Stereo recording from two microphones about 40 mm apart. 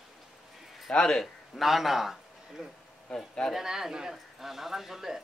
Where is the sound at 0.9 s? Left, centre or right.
Centre.